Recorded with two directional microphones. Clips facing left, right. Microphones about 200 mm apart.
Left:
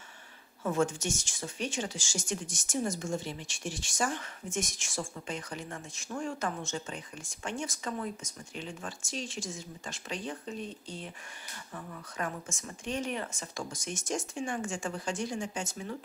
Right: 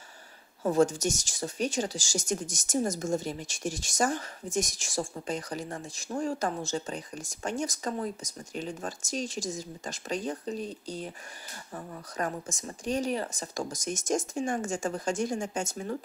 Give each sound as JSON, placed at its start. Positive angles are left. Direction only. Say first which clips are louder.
{"t": 0.7, "sound": "speech", "louder": "right 5 dB", "side_deg": -40}